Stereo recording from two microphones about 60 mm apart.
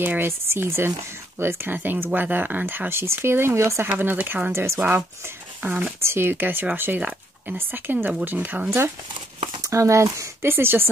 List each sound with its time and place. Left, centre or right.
0.0 s speech: right
3.9 s speech: right
4.5 s speech: right
5.6 s speech: right
7.5 s speech: right
8.6 s speech: right
10.4 s speech: right